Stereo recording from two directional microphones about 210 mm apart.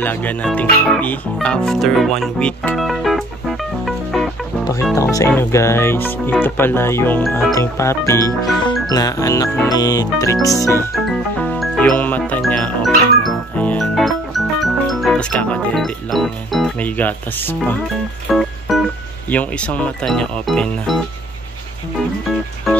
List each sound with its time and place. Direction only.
0.0 s speech: 5° left (ahead or behind)
4.9 s music: 15° left (ahead or behind)
11.5 s music: centre (ahead or behind)
18.3 s speech: centre (ahead or behind)
18.7 s music: centre (ahead or behind)
19.3 s speech: 5° left (ahead or behind)